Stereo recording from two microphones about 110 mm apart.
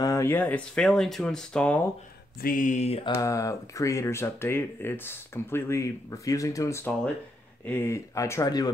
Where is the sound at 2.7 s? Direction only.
85° left.